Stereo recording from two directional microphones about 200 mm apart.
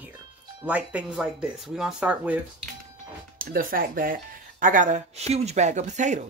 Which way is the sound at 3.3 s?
45° right (ahead or behind).